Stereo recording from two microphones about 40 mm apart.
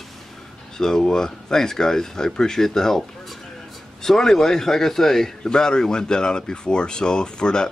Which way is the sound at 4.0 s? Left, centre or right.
Centre.